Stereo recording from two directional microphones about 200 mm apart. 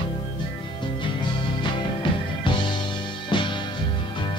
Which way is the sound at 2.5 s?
25° left (ahead or behind).